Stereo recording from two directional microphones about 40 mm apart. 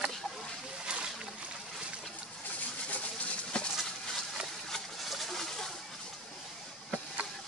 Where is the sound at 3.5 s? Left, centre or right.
Left.